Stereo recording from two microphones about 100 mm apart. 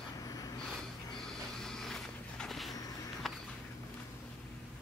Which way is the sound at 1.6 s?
5° left (ahead or behind).